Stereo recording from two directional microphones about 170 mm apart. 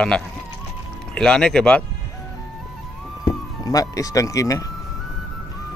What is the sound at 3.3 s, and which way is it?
Speech, 20° left (ahead or behind).